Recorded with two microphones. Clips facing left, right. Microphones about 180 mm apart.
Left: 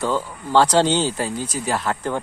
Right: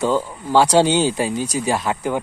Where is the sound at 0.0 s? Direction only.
15° right (ahead or behind).